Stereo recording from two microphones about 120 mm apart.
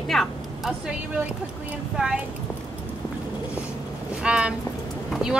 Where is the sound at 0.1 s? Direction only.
Centre (ahead or behind).